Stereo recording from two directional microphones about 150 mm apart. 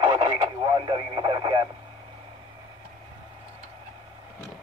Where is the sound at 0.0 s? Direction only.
30° right (ahead or behind).